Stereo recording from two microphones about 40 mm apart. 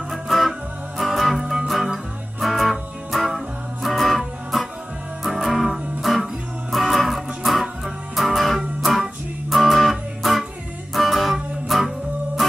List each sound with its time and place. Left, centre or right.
0.1 s music: centre